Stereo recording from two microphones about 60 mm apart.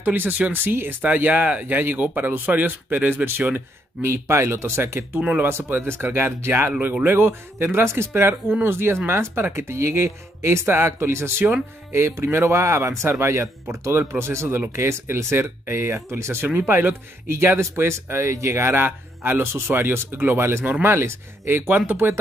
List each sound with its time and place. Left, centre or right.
0.0 s speech: right
4.0 s speech: right
5.4 s speech: right